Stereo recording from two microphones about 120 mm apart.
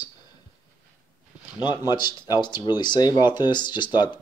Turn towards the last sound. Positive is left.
turn(degrees=40)  # may be behind; listen again after turning